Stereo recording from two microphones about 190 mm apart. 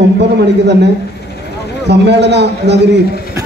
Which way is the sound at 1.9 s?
65° right (ahead or behind).